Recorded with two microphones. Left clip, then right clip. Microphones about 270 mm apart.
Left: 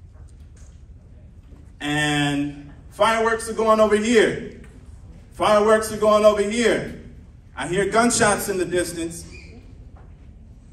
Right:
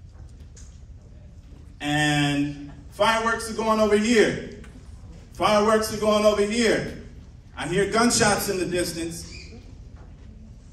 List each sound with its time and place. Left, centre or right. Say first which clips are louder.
1.8 s a sound: left 1 dB; centre
3.0 s a man's voice: left 3 dB; centre
5.4 s a man's voice: left 3 dB; centre